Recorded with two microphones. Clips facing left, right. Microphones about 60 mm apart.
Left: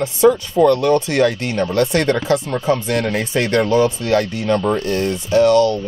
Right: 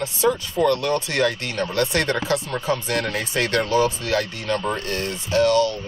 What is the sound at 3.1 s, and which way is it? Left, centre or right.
Speech, left.